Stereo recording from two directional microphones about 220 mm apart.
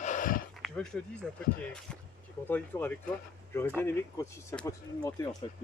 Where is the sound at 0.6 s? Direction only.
Centre (ahead or behind).